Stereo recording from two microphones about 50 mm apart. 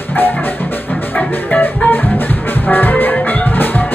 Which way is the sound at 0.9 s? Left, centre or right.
Left.